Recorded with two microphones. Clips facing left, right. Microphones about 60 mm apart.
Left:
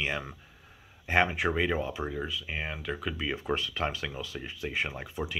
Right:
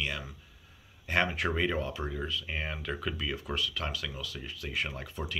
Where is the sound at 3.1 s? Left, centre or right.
Left.